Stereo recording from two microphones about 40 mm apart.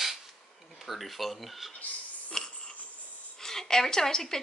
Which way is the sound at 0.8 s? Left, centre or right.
Centre.